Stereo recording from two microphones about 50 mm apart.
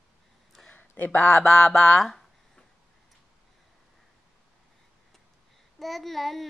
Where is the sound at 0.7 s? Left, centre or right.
Left.